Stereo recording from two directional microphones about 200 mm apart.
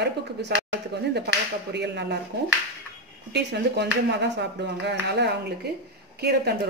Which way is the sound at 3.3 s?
55° right (ahead or behind).